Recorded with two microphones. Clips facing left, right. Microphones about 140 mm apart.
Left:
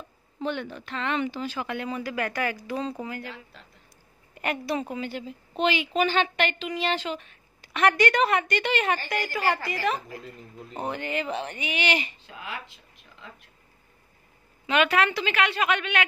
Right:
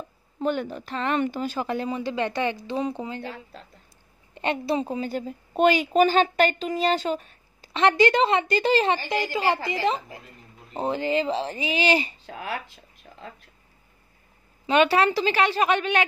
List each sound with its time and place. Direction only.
0.4 s a woman's voice: 40° right (ahead or behind)
7.7 s a woman's voice: 25° right (ahead or behind); by 12.6 s 40° right (ahead or behind)
14.7 s a woman's voice: 30° right (ahead or behind)